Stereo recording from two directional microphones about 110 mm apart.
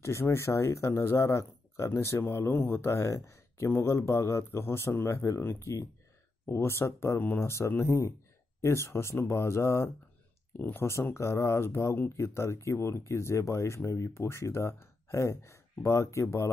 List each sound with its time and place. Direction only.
0.0 s speech: 25° left (ahead or behind)